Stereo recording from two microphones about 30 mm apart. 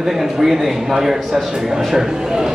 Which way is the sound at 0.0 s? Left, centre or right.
Centre.